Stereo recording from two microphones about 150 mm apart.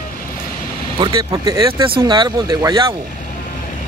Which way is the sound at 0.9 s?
30° right (ahead or behind).